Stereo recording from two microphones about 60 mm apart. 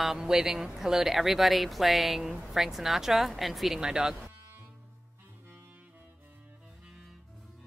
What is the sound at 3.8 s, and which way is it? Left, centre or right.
Speech, centre.